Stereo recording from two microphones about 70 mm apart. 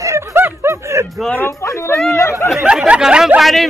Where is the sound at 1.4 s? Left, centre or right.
Left.